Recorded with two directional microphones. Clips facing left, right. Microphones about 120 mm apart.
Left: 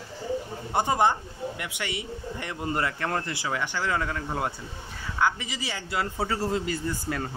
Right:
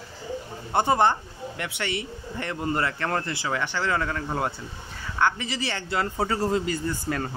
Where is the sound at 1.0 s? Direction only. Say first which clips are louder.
Right 1 dB; 10° left (ahead or behind).